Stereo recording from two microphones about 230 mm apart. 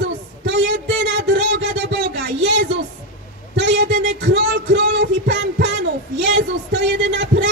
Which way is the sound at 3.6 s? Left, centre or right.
Right.